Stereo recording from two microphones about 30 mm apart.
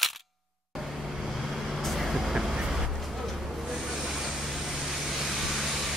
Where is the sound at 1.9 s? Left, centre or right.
Centre.